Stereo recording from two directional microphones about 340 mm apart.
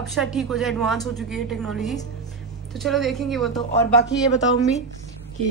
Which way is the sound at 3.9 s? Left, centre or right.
Left.